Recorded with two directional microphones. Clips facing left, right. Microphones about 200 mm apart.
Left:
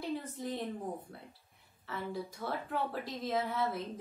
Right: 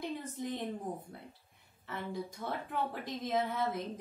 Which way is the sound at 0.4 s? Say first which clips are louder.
Even; 15° right (ahead or behind).